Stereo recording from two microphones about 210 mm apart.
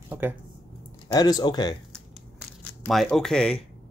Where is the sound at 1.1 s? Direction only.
20° left (ahead or behind).